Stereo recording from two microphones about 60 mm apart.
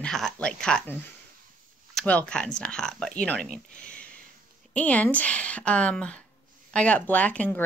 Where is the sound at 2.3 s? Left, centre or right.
Centre.